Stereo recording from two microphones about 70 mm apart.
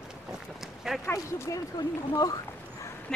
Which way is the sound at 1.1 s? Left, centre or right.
Left.